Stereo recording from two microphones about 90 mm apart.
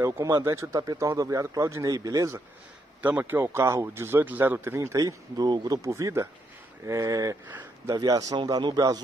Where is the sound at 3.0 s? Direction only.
20° right (ahead or behind).